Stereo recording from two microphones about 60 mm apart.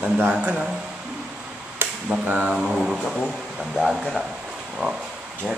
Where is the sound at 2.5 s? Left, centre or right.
Centre.